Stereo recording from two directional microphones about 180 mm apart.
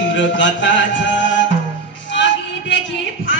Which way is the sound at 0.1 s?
90° left.